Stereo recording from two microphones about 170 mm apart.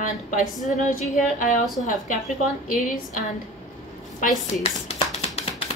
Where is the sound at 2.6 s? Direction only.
55° left (ahead or behind).